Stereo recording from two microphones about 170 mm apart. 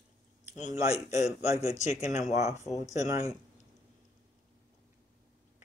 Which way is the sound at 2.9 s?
20° right (ahead or behind).